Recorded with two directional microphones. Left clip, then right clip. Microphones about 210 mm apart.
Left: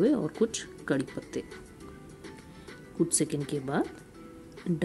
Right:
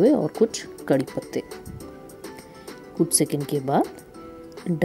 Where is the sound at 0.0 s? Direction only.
15° right (ahead or behind).